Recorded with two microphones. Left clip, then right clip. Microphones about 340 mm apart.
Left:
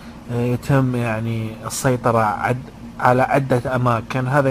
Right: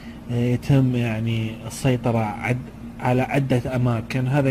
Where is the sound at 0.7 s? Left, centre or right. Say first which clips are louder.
Left 4 dB; left.